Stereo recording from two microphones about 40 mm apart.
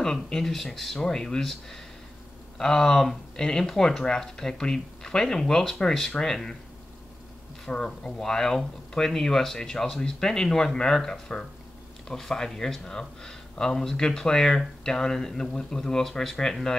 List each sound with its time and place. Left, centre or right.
0.3 s speech: centre
7.6 s speech: centre